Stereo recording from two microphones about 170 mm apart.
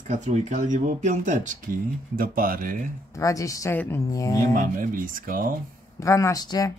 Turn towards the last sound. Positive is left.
turn(degrees=20)  # may be behind; listen again after turning